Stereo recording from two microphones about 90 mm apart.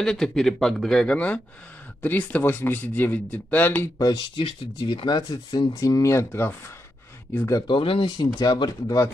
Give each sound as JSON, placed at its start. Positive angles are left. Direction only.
{"t": 0.0, "sound": "speech", "side_deg": 5}
{"t": 4.0, "sound": "speech", "side_deg": 60}
{"t": 7.6, "sound": "speech", "side_deg": 70}
{"t": 8.2, "sound": "speech", "side_deg": 50}